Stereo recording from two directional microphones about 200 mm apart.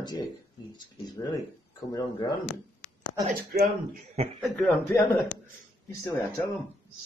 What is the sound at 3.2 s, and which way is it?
Speech, 45° right (ahead or behind).